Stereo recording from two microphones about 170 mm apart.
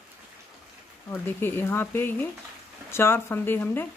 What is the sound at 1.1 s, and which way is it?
Speech, 10° left (ahead or behind).